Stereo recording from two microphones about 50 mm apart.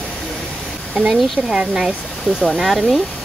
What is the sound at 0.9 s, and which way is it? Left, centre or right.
Speech, centre.